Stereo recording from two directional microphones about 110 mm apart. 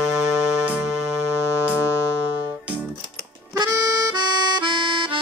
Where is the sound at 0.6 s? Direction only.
10° right (ahead or behind).